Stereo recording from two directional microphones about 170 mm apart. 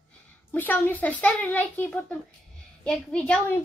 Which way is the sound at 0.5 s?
10° left (ahead or behind).